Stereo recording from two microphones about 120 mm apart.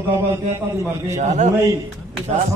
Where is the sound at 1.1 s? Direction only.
80° right.